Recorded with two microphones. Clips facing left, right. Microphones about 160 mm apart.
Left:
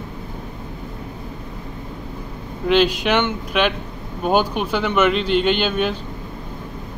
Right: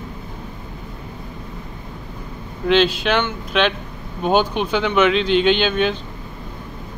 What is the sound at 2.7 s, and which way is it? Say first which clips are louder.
Speech: even; 10° left (ahead or behind).